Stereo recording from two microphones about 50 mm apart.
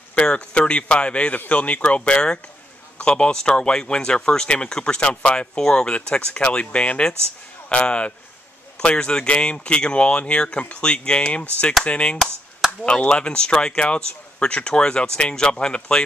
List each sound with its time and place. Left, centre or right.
0.1 s speech: left